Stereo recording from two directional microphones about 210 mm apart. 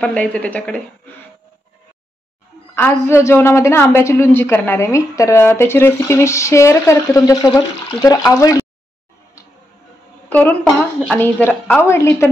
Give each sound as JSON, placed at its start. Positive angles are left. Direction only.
{"t": 0.0, "sound": "speech", "side_deg": 5}
{"t": 2.7, "sound": "a woman's voice", "side_deg": 10}
{"t": 10.3, "sound": "a woman's voice", "side_deg": 10}